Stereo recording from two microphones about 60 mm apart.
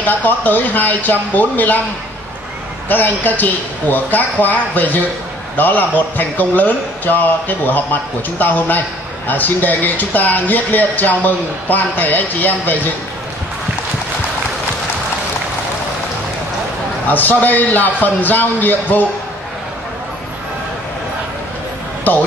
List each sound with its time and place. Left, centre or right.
0.0 s speech: left
2.9 s speech: left
17.1 s speech: left
22.1 s speech: left